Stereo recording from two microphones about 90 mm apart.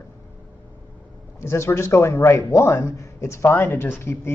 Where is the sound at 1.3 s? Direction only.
30° left (ahead or behind).